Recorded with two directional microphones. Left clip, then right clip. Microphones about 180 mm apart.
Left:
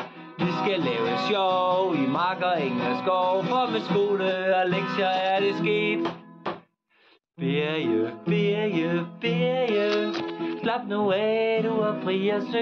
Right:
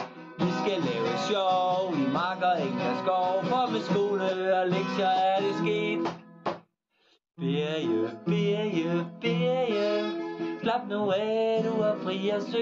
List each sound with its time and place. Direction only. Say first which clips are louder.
0.6 s music: left 4 dB; 30° left (ahead or behind)
7.4 s music: left 3 dB; 35° left (ahead or behind)